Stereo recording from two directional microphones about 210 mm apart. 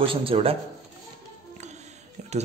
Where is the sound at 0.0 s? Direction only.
25° right (ahead or behind).